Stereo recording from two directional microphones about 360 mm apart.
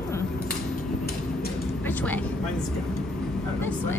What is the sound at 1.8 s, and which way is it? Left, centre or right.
Vehicle, centre.